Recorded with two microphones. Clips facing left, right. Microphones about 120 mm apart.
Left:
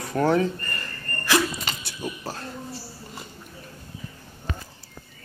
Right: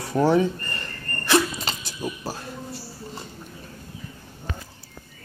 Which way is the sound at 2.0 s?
10° right (ahead or behind).